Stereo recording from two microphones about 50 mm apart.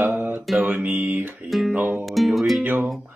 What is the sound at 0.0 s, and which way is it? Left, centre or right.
Mantra, right.